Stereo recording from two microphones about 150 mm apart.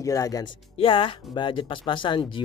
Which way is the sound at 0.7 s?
35° left (ahead or behind).